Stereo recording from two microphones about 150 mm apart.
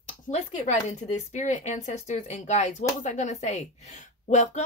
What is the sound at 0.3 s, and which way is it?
A woman's voice, 50° left (ahead or behind).